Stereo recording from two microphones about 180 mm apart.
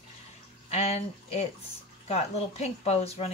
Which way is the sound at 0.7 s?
35° left (ahead or behind).